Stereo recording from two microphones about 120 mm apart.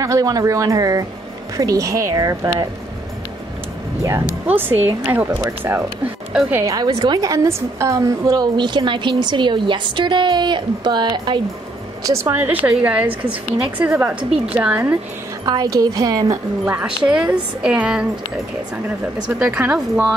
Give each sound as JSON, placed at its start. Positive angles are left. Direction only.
{"t": 0.0, "sound": "a woman's voice", "side_deg": -30}
{"t": 4.0, "sound": "a woman's voice", "side_deg": -20}
{"t": 6.9, "sound": "a woman's voice", "side_deg": -40}
{"t": 7.2, "sound": "a woman's voice", "side_deg": -25}
{"t": 8.5, "sound": "a woman's voice", "side_deg": -40}
{"t": 12.0, "sound": "a woman's voice", "side_deg": -25}
{"t": 12.4, "sound": "a woman's voice", "side_deg": -15}
{"t": 15.4, "sound": "a woman's voice", "side_deg": -30}
{"t": 16.6, "sound": "a woman's voice", "side_deg": -15}
{"t": 19.2, "sound": "a woman's voice", "side_deg": -10}